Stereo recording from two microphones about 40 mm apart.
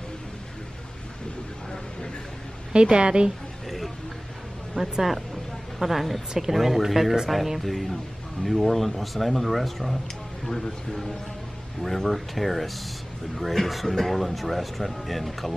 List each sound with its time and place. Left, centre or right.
2.7 s a woman's voice: right
3.6 s a sound: centre
4.7 s speech: centre
5.8 s speech: centre
10.4 s speech: centre
11.8 s speech: centre